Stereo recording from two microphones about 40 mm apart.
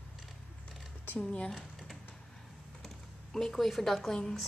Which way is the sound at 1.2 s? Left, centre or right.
Left.